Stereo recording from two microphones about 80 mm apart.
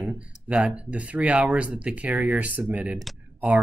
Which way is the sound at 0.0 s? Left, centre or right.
Centre.